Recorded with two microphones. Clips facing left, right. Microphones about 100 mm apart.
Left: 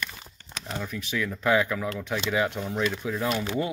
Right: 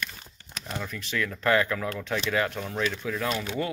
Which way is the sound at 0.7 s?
10° left (ahead or behind).